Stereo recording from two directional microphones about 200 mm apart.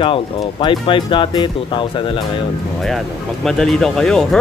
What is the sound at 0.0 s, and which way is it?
Speech, 25° left (ahead or behind).